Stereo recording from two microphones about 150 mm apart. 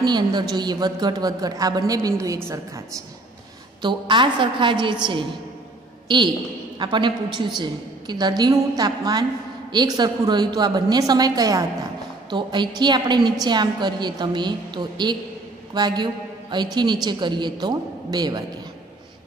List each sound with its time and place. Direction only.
0.0 s a woman's voice: 30° right (ahead or behind)
3.8 s a woman's voice: 30° right (ahead or behind)
6.0 s a man's voice: 30° right (ahead or behind)